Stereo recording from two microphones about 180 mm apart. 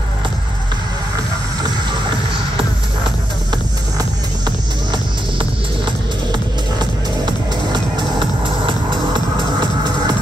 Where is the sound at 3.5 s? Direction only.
25° right (ahead or behind).